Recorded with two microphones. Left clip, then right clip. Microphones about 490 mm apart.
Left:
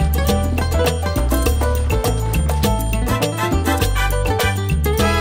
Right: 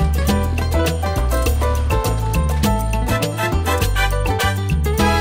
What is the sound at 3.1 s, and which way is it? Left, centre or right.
Music, left.